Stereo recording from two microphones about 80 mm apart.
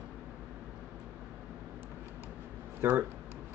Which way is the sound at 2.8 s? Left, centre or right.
Right.